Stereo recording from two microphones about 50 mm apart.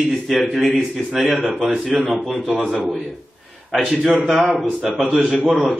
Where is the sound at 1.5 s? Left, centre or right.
Centre.